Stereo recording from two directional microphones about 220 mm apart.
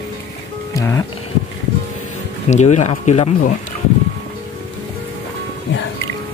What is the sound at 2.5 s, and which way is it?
Speech, 30° left (ahead or behind).